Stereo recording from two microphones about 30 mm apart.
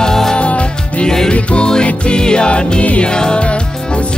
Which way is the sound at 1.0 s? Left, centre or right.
Left.